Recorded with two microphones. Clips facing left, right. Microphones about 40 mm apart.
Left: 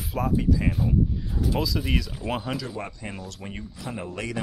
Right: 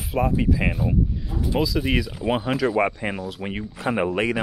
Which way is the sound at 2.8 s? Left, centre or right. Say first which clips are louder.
Right 12 dB; right.